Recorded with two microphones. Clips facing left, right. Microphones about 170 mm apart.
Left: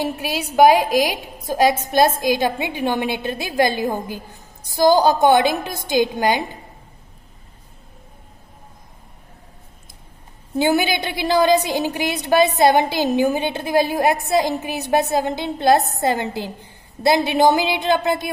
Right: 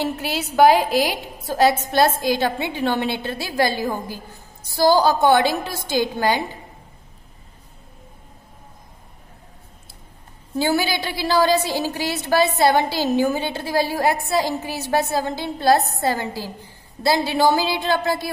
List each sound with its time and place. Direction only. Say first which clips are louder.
0.0 s a woman's voice: left 1 dB; 10° left (ahead or behind)
10.5 s a woman's voice: left 3 dB; 20° left (ahead or behind)